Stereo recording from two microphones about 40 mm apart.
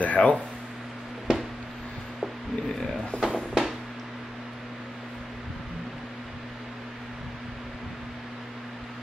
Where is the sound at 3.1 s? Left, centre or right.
Left.